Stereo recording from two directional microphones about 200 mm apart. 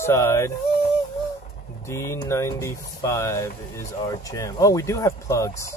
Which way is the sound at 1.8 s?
15° left (ahead or behind).